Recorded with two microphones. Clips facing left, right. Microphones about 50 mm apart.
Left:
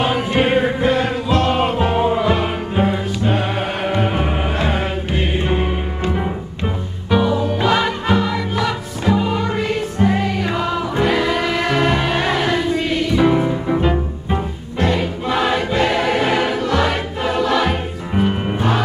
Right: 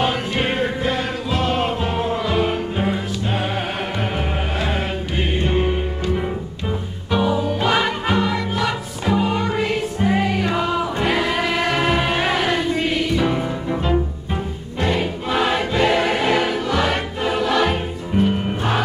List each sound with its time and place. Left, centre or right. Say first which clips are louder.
0.3 s music: left 5 dB; centre
7.1 s music: left 2 dB; centre
13.1 s music: left 5 dB; centre
14.8 s choir: left 2 dB; centre
18.1 s music: left 1 dB; centre